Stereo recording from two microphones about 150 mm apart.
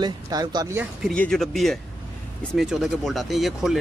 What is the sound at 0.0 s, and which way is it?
Speech, 25° right (ahead or behind).